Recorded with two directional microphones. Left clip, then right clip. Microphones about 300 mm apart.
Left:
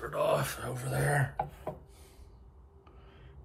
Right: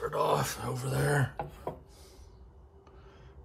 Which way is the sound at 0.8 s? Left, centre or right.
Right.